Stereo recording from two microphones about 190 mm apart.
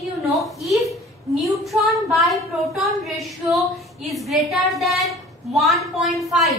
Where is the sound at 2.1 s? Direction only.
Centre (ahead or behind).